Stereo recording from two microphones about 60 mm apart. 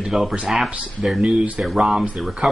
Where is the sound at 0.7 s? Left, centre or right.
Centre.